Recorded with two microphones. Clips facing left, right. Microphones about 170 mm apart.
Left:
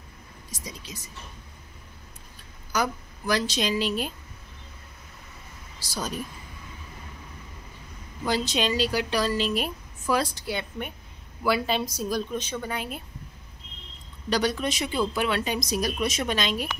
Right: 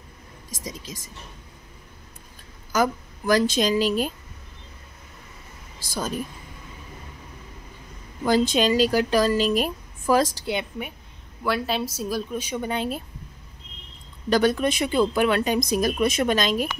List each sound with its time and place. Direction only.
0.9 s speech: 45° right (ahead or behind)
2.7 s speech: 45° right (ahead or behind)
5.9 s speech: 50° right (ahead or behind)
8.3 s speech: 45° right (ahead or behind)
10.4 s speech: 20° right (ahead or behind)
11.4 s speech: centre (ahead or behind)
12.6 s speech: 25° right (ahead or behind)
14.3 s speech: 50° right (ahead or behind)